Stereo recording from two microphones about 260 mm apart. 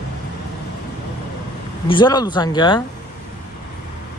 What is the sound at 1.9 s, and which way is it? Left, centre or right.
Speech, centre.